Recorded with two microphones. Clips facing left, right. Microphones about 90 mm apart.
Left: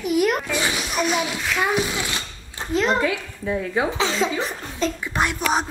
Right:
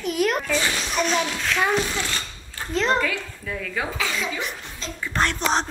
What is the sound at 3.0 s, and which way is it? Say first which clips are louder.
Speech: left 3 dB; 25° left (ahead or behind).